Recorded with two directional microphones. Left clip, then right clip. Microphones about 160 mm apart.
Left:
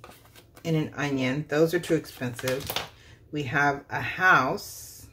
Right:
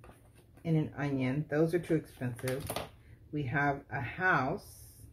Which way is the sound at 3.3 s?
5° left (ahead or behind).